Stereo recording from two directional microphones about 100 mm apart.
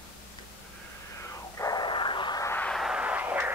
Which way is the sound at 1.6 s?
45° left (ahead or behind).